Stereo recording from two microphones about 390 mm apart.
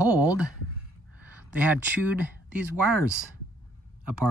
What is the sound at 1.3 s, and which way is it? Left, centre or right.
Speech, centre.